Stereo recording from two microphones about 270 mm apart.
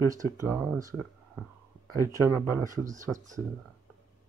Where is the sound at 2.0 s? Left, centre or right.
Centre.